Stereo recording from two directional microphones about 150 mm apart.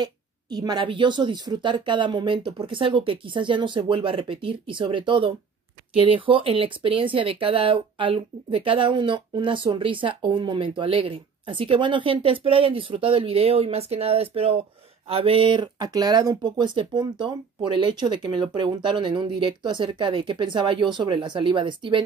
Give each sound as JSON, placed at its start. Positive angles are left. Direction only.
{"t": 0.0, "sound": "speech", "side_deg": -25}